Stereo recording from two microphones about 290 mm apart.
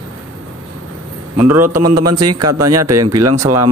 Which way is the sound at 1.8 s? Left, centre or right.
Right.